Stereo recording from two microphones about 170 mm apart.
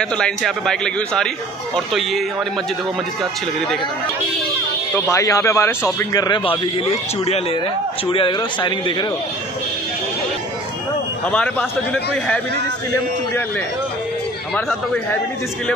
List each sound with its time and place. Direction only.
0.0 s a man's voice: 5° left (ahead or behind)
5.1 s a man's voice: 15° left (ahead or behind)
11.2 s a man's voice: 10° left (ahead or behind)